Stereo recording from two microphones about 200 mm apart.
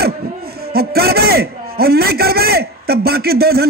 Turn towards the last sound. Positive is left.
turn(degrees=-50)  # may be behind; listen again after turning